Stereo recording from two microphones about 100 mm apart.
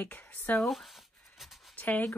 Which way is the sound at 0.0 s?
15° left (ahead or behind).